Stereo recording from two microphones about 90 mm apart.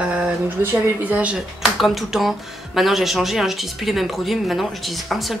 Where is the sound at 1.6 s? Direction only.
Centre (ahead or behind).